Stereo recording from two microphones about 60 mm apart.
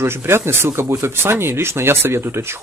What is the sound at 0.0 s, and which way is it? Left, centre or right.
Speech, right.